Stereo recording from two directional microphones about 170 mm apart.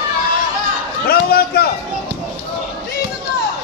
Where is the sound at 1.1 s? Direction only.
65° left (ahead or behind).